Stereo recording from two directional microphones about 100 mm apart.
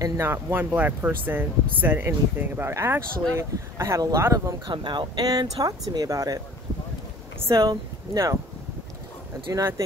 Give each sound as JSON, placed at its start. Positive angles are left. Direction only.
{"t": 0.0, "sound": "speech", "side_deg": -25}
{"t": 4.6, "sound": "speech", "side_deg": -50}
{"t": 7.4, "sound": "speech", "side_deg": -35}